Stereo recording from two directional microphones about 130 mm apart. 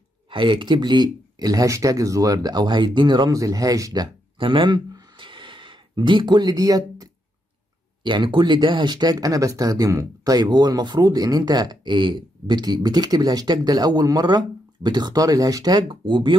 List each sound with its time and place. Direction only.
0.3 s speech: 40° right (ahead or behind)